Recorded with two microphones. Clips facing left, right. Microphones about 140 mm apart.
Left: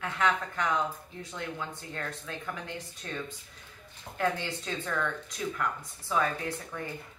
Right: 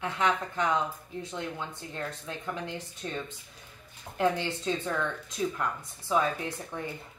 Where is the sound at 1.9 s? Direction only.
20° right (ahead or behind).